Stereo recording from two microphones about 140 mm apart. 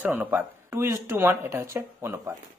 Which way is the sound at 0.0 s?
10° right (ahead or behind).